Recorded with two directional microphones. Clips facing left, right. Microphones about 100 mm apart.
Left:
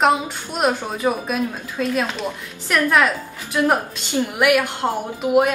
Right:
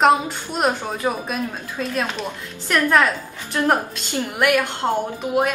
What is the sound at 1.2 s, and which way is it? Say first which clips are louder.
A woman's voice: left 3 dB; centre (ahead or behind).